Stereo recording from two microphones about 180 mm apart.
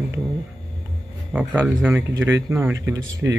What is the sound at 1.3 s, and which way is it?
Speech, 10° right (ahead or behind).